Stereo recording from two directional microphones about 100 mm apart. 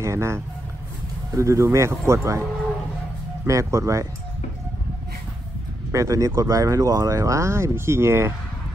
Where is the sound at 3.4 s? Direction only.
30° right (ahead or behind).